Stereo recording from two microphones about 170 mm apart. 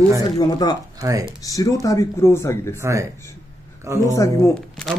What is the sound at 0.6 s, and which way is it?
Speech, 20° left (ahead or behind).